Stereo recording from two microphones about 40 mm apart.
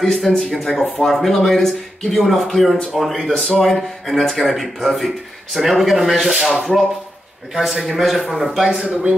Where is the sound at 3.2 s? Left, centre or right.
Centre.